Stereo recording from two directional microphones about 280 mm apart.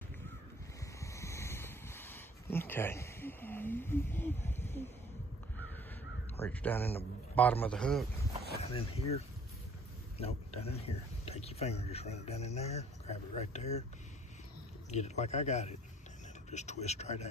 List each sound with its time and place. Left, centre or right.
1.0 s a sound: centre
6.4 s a man's voice: centre
8.7 s speech: left
14.9 s speech: left